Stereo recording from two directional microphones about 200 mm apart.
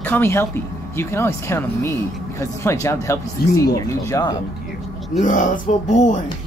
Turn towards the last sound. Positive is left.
turn(degrees=35)  # may be behind; listen again after turning